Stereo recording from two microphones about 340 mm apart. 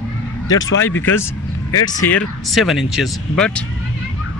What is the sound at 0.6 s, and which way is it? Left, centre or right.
Speech, left.